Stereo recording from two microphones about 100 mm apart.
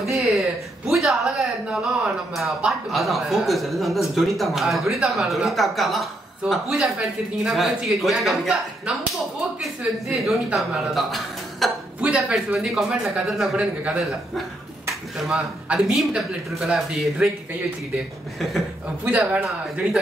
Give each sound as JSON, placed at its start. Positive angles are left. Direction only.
{"t": 0.0, "sound": "a man's voice", "side_deg": 0}
{"t": 12.0, "sound": "speech", "side_deg": -10}
{"t": 15.1, "sound": "a man's voice", "side_deg": -5}
{"t": 19.0, "sound": "speech", "side_deg": -15}
{"t": 19.4, "sound": "a man's voice", "side_deg": -5}